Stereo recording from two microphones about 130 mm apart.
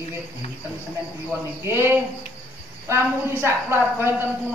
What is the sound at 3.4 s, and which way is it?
Speech, 20° right (ahead or behind).